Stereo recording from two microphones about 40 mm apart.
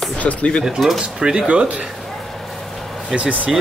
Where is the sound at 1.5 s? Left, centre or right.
Right.